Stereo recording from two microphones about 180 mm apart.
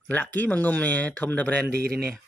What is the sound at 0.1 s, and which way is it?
Speech, 10° left (ahead or behind).